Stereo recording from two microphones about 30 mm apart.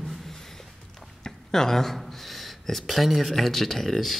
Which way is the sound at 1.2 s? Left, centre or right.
Centre.